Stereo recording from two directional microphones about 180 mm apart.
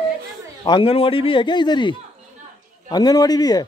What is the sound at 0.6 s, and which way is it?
Speech, 30° left (ahead or behind).